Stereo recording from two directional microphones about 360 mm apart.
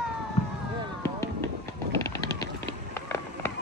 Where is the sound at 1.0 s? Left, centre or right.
Centre.